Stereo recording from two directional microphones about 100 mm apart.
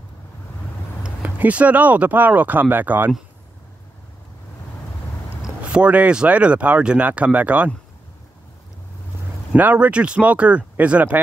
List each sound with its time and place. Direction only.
1.0 s speech: 15° right (ahead or behind)
5.4 s speech: 10° right (ahead or behind)
9.5 s speech: 15° right (ahead or behind)